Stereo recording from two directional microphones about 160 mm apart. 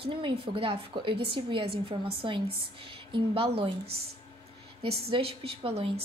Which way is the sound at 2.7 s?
35° right (ahead or behind).